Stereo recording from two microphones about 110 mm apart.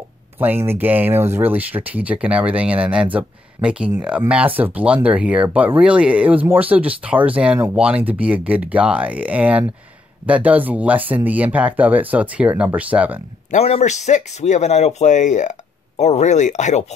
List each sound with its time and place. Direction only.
0.4 s speech: 20° right (ahead or behind)
13.6 s speech: 70° left (ahead or behind); by 16.8 s 90° left